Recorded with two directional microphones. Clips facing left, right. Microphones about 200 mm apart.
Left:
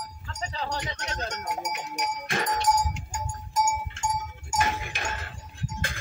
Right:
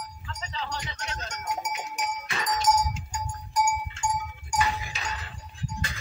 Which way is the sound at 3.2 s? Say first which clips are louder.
Even; 25° left (ahead or behind).